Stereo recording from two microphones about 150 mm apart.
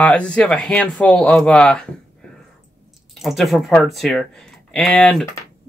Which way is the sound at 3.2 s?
Centre (ahead or behind).